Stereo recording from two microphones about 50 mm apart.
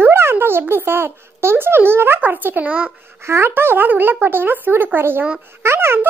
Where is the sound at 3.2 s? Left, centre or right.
Right.